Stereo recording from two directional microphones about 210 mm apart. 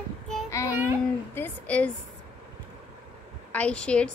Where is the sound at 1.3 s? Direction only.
10° left (ahead or behind).